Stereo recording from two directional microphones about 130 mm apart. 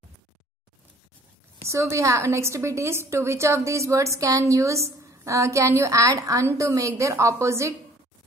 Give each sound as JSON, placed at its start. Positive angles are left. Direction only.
{"t": 1.6, "sound": "a woman's voice", "side_deg": -25}